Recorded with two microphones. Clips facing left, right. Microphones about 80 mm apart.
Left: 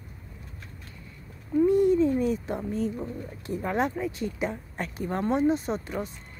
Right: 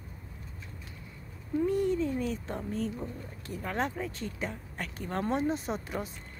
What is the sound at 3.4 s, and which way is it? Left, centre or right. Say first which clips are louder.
Speech: left 6 dB; left.